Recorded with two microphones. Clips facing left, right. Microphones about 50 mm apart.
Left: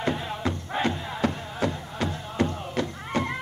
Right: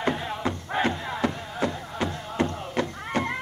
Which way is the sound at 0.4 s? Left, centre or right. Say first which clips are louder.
Right 1 dB; right.